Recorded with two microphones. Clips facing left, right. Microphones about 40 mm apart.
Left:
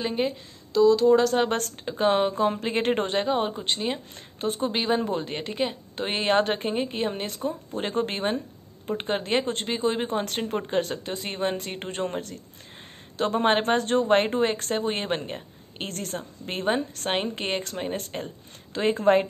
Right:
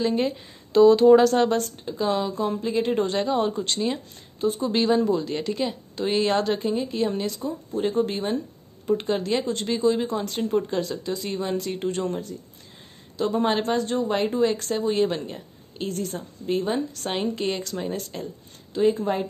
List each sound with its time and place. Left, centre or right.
0.1 s speech: centre
0.7 s speech: right
1.5 s speech: left
3.2 s speech: left
4.4 s speech: left
4.7 s speech: left
8.8 s speech: left
13.2 s speech: left